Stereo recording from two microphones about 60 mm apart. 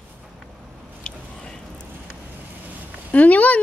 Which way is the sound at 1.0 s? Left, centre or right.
Centre.